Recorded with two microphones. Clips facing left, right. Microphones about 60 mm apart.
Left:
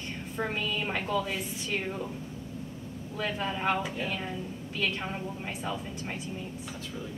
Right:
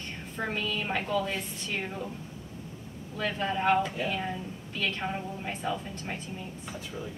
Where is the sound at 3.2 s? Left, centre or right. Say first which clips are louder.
Right 2 dB; centre.